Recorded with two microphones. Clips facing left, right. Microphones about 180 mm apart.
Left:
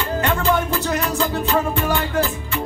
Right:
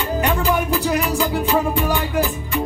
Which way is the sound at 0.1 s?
15° right (ahead or behind).